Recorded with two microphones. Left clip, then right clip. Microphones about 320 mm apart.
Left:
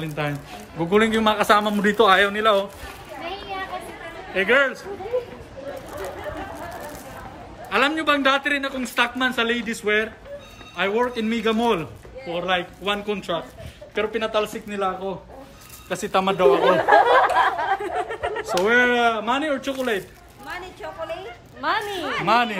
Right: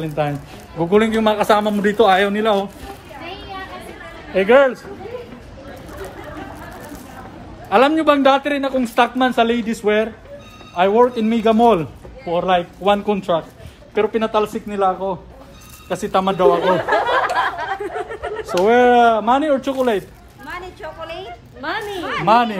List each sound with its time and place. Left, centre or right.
0.0 s a man's voice: centre
4.3 s a man's voice: centre
7.7 s a man's voice: centre
15.9 s a man's voice: centre
16.6 s chatter: left
18.6 s a man's voice: centre
20.4 s vehicle: right
21.5 s speech: centre
22.2 s a man's voice: centre